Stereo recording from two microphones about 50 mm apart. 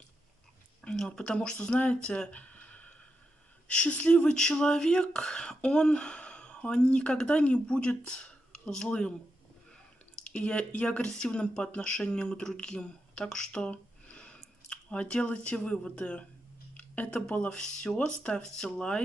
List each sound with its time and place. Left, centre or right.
0.8 s speech: centre
2.0 s a sound: left
3.6 s speech: left
10.2 s speech: left
13.7 s a sound: left
17.3 s speech: centre